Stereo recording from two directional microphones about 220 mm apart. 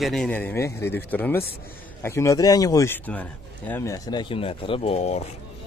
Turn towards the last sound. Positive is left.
turn(degrees=30)  # may be behind; listen again after turning